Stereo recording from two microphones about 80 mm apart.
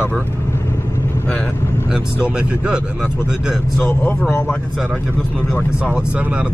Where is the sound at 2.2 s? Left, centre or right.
Centre.